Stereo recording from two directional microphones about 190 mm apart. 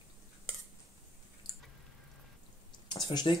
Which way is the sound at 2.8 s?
25° left (ahead or behind).